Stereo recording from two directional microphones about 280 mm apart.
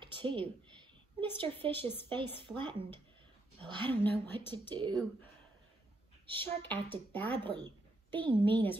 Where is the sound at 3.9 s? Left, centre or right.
Centre.